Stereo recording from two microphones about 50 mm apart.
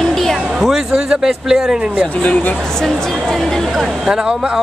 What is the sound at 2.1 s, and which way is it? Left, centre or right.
Speech, left.